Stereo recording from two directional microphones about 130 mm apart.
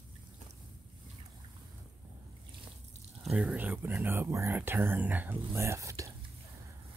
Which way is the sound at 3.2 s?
10° right (ahead or behind).